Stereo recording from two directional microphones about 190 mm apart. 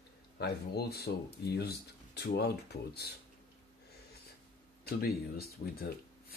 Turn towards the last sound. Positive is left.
turn(degrees=55)  # may be behind; listen again after turning